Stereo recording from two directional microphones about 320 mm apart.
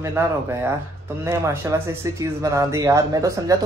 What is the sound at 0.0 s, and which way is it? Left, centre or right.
Speech, centre.